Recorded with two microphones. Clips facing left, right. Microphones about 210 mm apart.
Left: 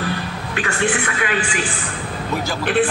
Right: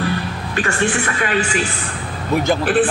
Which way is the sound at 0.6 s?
45° right (ahead or behind).